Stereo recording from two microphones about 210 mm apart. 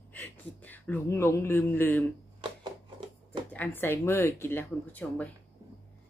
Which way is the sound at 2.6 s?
20° right (ahead or behind).